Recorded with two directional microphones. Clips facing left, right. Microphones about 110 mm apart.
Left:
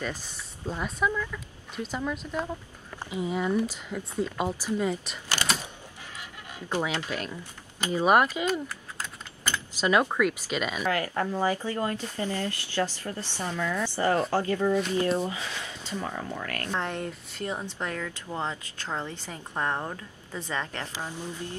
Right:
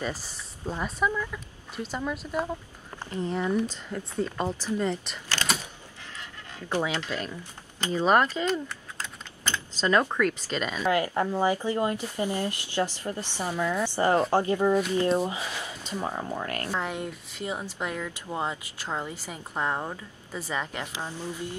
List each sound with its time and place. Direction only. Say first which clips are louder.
0.7 s speech: even; 5° right (ahead or behind)
3.0 s speech: even; 10° left (ahead or behind)
6.7 s speech: right 1 dB; 15° left (ahead or behind)
10.8 s speech: right 5 dB; 20° right (ahead or behind)
16.7 s speech: left 3 dB; 5° right (ahead or behind)